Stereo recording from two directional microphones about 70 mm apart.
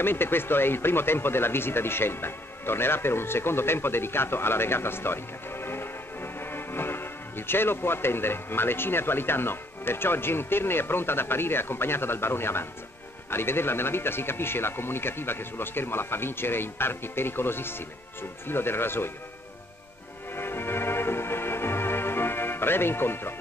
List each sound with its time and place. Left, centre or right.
0.0 s speech: left
20.3 s music: left